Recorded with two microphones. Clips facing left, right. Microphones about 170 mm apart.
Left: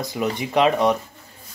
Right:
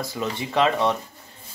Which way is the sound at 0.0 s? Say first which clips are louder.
Left 4 dB; 20° left (ahead or behind).